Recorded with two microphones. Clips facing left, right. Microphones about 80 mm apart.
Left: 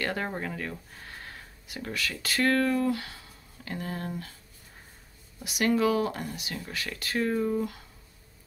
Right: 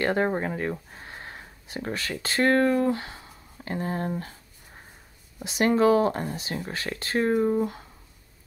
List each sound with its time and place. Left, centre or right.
0.0 s speech: right
5.4 s speech: right